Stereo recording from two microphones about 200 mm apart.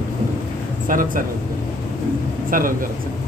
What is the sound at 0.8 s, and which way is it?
Speech, 40° right (ahead or behind).